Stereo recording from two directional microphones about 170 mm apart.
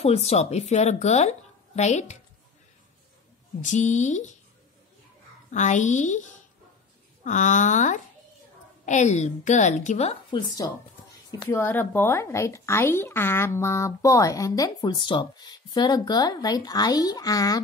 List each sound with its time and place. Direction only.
0.0 s a woman's voice: 40° left (ahead or behind)
3.7 s a woman's voice: 45° left (ahead or behind)
5.5 s a woman's voice: 45° left (ahead or behind)
7.2 s a woman's voice: 45° left (ahead or behind)
10.6 s speech: 20° left (ahead or behind)
11.5 s speech: 10° left (ahead or behind)